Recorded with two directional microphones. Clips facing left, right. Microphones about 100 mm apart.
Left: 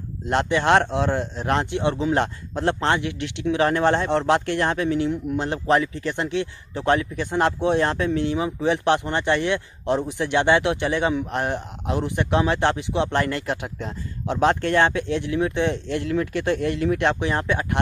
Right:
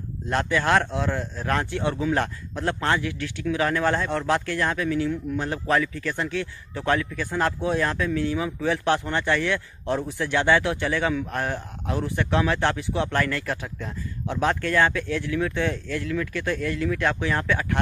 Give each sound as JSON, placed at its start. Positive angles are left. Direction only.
{"t": 0.3, "sound": "speech", "side_deg": 25}